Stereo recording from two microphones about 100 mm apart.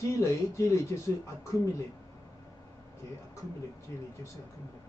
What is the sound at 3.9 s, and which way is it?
Speech, 30° left (ahead or behind).